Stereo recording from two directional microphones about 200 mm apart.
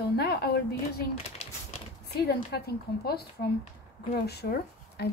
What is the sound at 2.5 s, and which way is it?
A woman's voice, 55° left (ahead or behind).